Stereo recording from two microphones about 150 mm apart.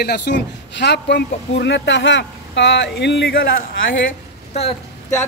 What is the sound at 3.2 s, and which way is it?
Speech, 90° left.